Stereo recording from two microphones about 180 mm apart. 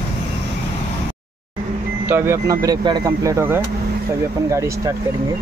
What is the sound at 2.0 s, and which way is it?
Speech, 15° right (ahead or behind).